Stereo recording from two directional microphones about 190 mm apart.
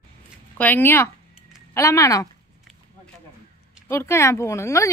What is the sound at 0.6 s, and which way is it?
Speech, 10° left (ahead or behind).